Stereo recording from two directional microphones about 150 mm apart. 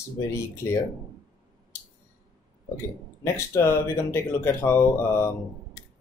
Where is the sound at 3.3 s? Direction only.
20° left (ahead or behind).